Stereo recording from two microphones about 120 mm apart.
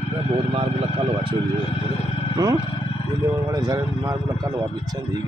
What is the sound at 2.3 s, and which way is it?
Speech, 30° right (ahead or behind).